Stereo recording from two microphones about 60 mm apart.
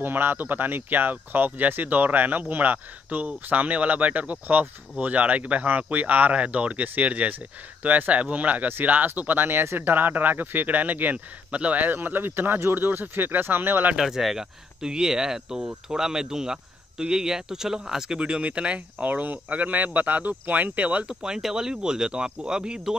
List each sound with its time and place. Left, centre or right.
0.0 s speech: right
13.9 s speech: centre